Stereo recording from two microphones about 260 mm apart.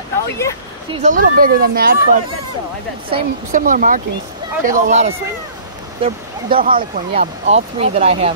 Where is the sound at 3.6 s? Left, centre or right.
Right.